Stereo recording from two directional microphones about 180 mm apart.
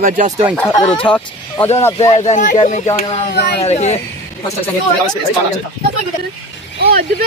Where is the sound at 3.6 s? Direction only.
35° left (ahead or behind).